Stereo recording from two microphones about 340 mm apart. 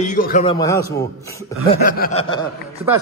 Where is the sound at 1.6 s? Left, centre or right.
Left.